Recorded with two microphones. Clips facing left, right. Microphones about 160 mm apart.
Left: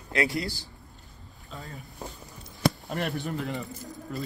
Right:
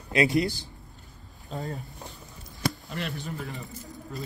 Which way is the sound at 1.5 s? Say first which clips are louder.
Right 8 dB; 40° right (ahead or behind).